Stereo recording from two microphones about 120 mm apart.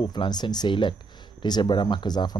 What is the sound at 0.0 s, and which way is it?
Speech, 40° left (ahead or behind).